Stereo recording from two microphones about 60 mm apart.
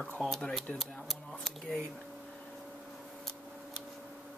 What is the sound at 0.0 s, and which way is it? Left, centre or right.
Speech, centre.